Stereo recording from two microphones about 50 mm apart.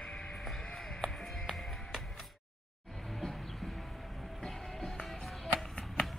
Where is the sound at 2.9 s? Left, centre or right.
Centre.